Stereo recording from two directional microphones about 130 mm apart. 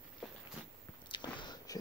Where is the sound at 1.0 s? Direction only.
35° left (ahead or behind).